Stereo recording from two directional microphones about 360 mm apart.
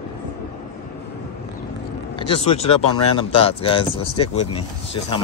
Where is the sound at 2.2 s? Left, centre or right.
Centre.